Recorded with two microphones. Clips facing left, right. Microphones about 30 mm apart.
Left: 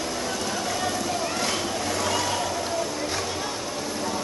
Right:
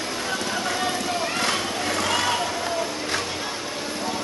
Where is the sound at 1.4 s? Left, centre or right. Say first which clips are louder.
Right 2 dB; right.